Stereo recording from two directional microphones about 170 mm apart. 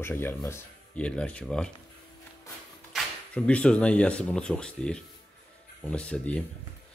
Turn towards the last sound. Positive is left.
turn(degrees=5)  # may be behind; listen again after turning